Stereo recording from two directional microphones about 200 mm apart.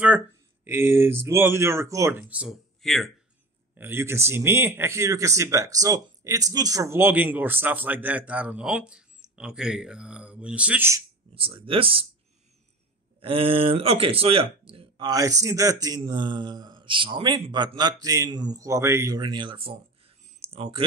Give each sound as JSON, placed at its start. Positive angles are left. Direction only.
{"t": 0.7, "sound": "speech", "side_deg": -10}
{"t": 3.7, "sound": "speech", "side_deg": -10}
{"t": 11.3, "sound": "speech", "side_deg": -25}
{"t": 13.2, "sound": "speech", "side_deg": -25}
{"t": 20.3, "sound": "a sound", "side_deg": -30}